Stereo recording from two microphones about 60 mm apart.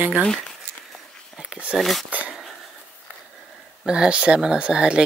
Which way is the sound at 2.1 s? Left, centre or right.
Right.